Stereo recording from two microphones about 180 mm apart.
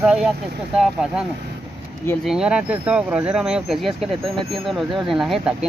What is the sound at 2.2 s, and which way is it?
Speech, 5° right (ahead or behind).